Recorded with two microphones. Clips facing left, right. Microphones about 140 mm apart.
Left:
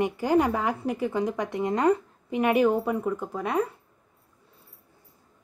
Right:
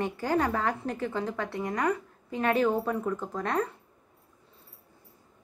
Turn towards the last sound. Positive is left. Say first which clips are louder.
# left 3 dB
turn(degrees=10)  # may be behind; listen again after turning